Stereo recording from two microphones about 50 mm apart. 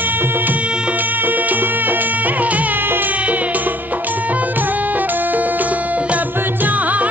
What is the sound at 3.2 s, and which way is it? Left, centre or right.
Music, right.